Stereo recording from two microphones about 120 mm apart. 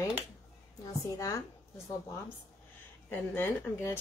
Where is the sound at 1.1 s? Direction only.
30° left (ahead or behind).